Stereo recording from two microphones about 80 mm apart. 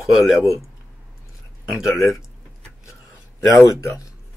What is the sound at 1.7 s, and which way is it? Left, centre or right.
Speech, centre.